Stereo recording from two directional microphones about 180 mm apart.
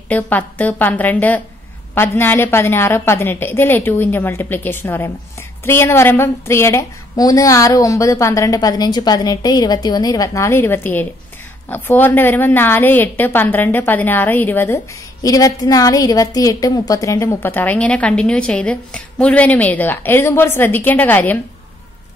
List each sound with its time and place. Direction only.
0.1 s a woman's voice: 10° left (ahead or behind)